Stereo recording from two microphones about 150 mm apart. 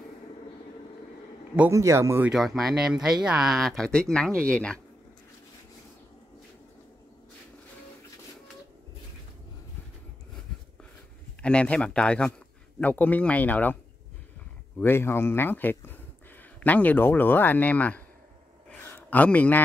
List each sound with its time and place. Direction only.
1.7 s speech: 20° right (ahead or behind)
2.3 s speech: centre (ahead or behind)
11.4 s a man's voice: 5° left (ahead or behind)
14.8 s a man's voice: 15° left (ahead or behind)
18.7 s a sound: 10° left (ahead or behind)